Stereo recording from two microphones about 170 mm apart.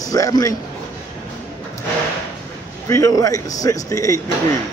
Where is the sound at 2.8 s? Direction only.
20° left (ahead or behind).